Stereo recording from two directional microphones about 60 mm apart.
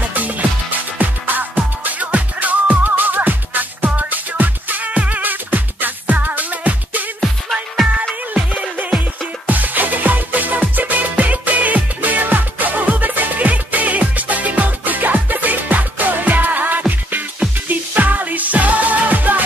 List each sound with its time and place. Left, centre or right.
0.1 s music: right
7.2 s music: centre
8.4 s music: right